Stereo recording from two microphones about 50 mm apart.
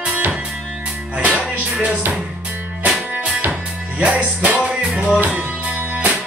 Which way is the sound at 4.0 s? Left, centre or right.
Right.